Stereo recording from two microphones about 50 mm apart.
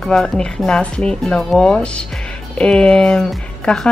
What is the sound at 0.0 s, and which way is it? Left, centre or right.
A woman's voice, centre.